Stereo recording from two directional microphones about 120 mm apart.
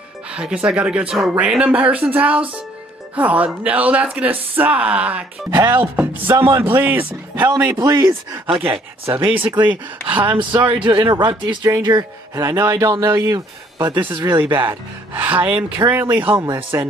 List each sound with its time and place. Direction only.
0.3 s speech: 10° right (ahead or behind)
5.5 s speech: 40° right (ahead or behind)
5.9 s speech: 20° right (ahead or behind)
7.7 s speech: 30° right (ahead or behind)
8.5 s speech: 20° right (ahead or behind)
9.2 s speech: 50° right (ahead or behind); by 14.0 s 20° right (ahead or behind)
14.0 s speech: 45° right (ahead or behind)
14.3 s speech: 15° right (ahead or behind)